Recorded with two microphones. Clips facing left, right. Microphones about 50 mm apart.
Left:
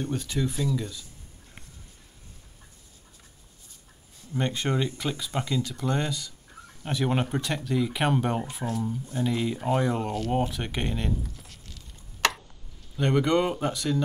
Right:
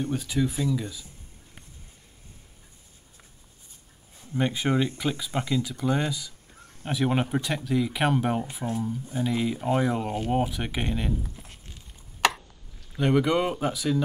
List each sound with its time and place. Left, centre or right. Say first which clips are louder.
0.0 s speech: right 2 dB; centre
4.4 s speech: right 2 dB; centre
8.6 s speech: right 1 dB; left
9.0 s speech: right 1 dB; centre
11.3 s a sound: right 1 dB; right
12.9 s speech: even; centre